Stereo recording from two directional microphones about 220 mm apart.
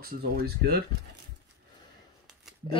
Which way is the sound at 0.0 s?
45° right (ahead or behind).